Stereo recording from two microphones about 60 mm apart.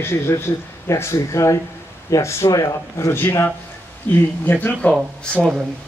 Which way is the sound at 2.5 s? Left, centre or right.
Left.